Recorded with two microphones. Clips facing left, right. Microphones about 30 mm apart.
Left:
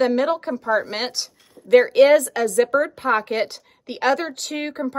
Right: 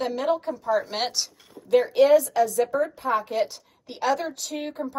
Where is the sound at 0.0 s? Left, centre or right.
Left.